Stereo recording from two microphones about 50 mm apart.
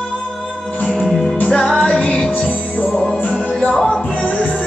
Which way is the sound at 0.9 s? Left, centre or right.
Centre.